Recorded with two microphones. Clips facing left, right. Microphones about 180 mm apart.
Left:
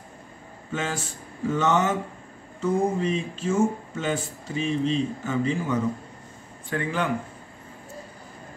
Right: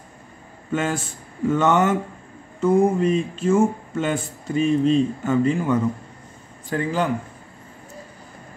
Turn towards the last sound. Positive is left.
turn(degrees=-40)  # may be behind; listen again after turning